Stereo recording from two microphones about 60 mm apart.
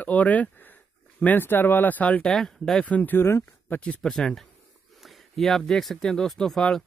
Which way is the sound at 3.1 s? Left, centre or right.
Left.